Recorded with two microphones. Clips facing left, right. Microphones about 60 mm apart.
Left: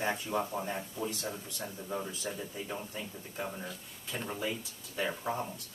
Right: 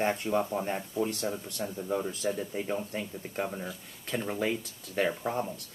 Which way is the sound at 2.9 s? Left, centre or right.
Right.